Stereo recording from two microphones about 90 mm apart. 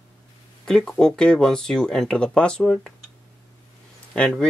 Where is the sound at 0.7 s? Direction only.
5° left (ahead or behind).